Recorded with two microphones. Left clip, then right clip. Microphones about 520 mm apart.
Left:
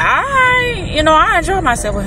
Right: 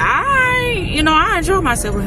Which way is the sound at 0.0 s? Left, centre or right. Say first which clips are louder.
Left 2 dB; right.